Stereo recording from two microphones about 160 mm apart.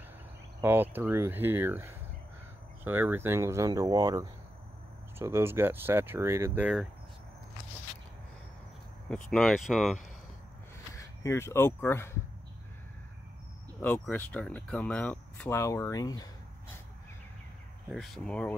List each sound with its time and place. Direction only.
0.6 s speech: 15° right (ahead or behind)
9.1 s speech: 5° left (ahead or behind)
11.0 s speech: 15° left (ahead or behind)
13.7 s speech: 10° left (ahead or behind)
17.8 s speech: centre (ahead or behind)